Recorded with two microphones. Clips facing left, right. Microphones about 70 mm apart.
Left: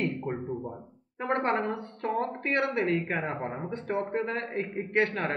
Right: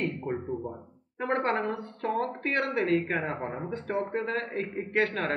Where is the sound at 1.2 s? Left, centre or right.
Centre.